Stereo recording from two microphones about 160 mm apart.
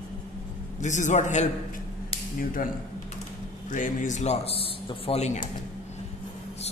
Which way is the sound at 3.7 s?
50° left (ahead or behind).